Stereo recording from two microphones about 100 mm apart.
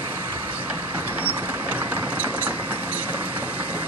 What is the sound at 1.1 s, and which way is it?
Vehicle, 15° right (ahead or behind).